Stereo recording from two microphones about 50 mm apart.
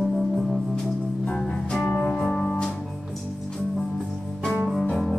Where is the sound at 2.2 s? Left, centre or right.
Centre.